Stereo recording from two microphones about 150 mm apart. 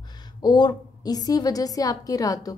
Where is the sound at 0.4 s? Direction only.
30° left (ahead or behind).